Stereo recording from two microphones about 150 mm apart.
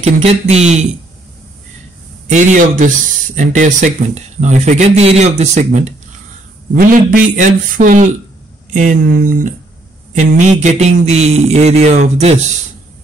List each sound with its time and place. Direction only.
0.0 s speech: 45° right (ahead or behind)
2.2 s a man's voice: 55° right (ahead or behind)
6.7 s a man's voice: 65° right (ahead or behind)
10.1 s speech: 55° right (ahead or behind)